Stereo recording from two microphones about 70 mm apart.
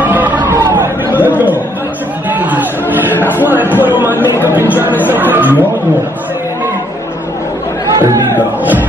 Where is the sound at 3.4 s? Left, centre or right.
Right.